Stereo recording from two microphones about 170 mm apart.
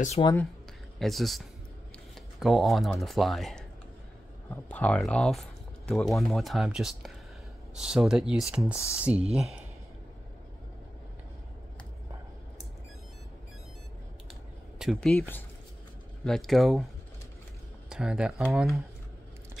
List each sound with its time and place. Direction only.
0.2 s speech: 20° left (ahead or behind)
0.9 s speech: centre (ahead or behind)
2.4 s speech: centre (ahead or behind)
14.8 s speech: centre (ahead or behind)
15.1 s speech: 10° left (ahead or behind)
16.3 s speech: centre (ahead or behind)
17.8 s speech: 5° right (ahead or behind)